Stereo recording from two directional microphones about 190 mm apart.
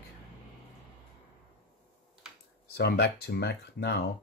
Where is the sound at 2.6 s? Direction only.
60° left (ahead or behind).